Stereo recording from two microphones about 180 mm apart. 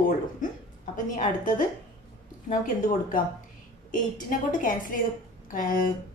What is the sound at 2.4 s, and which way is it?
Speech, 45° left (ahead or behind).